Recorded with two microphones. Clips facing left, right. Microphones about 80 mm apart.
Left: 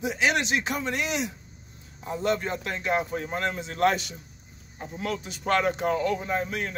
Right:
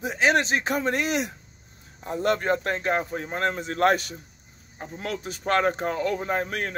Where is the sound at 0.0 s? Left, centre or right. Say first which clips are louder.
Right 3 dB; right.